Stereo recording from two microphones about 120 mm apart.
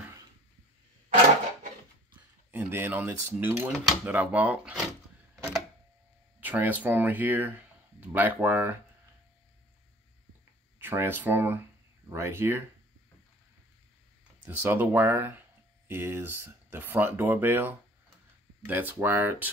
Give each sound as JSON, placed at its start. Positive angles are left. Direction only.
{"t": 2.5, "sound": "speech", "side_deg": -15}
{"t": 6.4, "sound": "speech", "side_deg": -15}
{"t": 10.8, "sound": "speech", "side_deg": -20}
{"t": 14.4, "sound": "speech", "side_deg": -15}